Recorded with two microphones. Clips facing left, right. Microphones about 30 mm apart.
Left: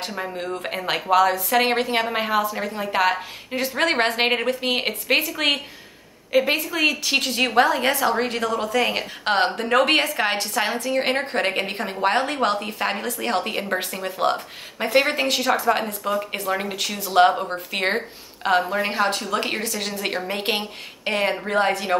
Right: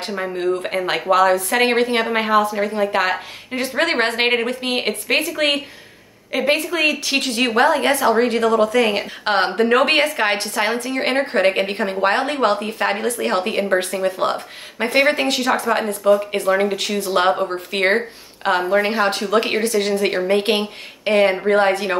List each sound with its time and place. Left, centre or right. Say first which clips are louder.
1.1 s a woman's voice: right 2 dB; centre
19.0 s a woman's voice: right 5 dB; right